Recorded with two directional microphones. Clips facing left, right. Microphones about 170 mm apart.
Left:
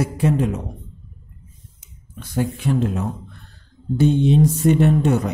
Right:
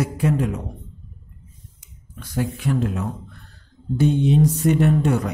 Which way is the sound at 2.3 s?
25° left (ahead or behind).